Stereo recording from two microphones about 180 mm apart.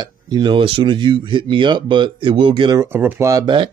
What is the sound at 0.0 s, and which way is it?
Speech, 25° right (ahead or behind).